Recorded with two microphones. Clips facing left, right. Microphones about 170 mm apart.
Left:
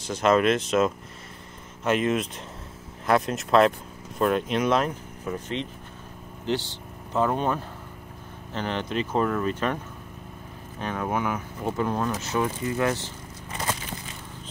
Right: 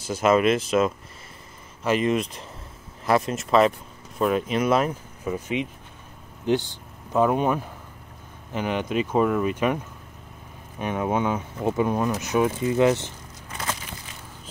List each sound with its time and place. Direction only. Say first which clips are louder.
0.0 s speech: right 1 dB; 5° right (ahead or behind)
10.8 s speech: right 3 dB; 15° right (ahead or behind)